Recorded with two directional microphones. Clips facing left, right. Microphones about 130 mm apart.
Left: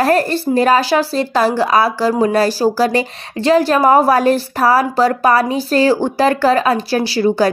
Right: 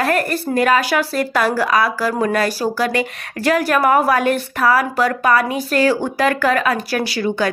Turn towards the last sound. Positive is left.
turn(degrees=30)  # may be behind; listen again after turning